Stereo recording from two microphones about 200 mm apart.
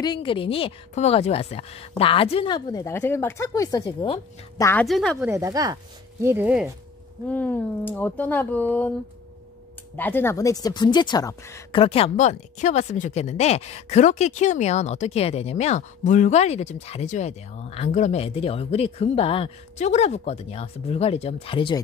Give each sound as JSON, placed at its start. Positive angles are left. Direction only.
{"t": 0.0, "sound": "a woman's voice", "side_deg": 25}
{"t": 4.8, "sound": "a woman's voice", "side_deg": 0}
{"t": 5.2, "sound": "speech", "side_deg": -15}
{"t": 7.2, "sound": "speech", "side_deg": 10}
{"t": 9.9, "sound": "speech", "side_deg": 10}
{"t": 11.7, "sound": "a woman's voice", "side_deg": 30}